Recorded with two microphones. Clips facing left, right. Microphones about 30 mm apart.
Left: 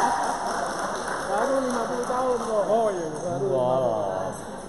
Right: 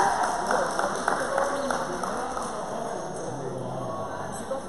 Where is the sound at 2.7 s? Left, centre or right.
Left.